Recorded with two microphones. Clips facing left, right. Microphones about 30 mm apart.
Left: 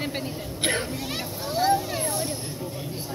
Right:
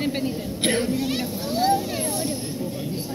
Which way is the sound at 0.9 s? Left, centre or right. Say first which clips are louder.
Right 6 dB; right.